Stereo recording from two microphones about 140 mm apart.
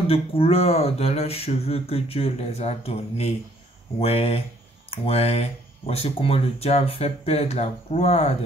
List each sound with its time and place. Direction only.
0.0 s speech: 45° left (ahead or behind)